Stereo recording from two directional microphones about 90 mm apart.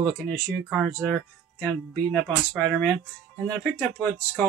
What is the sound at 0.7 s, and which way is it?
Speech, centre (ahead or behind).